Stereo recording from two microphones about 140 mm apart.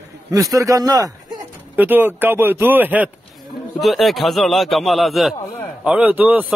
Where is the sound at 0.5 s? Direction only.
25° right (ahead or behind).